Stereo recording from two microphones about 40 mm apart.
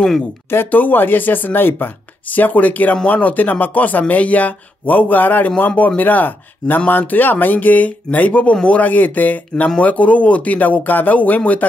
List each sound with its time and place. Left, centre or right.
0.7 s speech: left
2.3 s speech: left